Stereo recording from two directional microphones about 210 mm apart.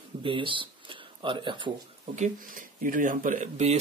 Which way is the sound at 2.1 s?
35° right (ahead or behind).